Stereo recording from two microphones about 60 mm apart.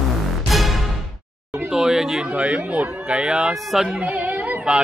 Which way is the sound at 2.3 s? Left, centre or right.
Right.